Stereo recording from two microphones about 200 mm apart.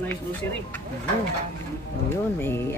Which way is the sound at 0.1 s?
10° left (ahead or behind).